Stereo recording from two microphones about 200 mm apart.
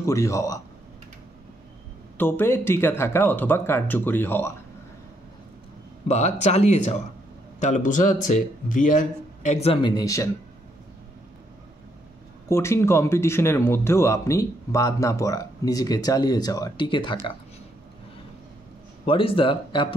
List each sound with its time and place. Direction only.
0.0 s speech: 15° left (ahead or behind)
2.1 s speech: 10° left (ahead or behind)
6.0 s speech: 35° left (ahead or behind); by 10.3 s 15° left (ahead or behind)
12.4 s speech: 15° left (ahead or behind)
19.0 s speech: 25° left (ahead or behind)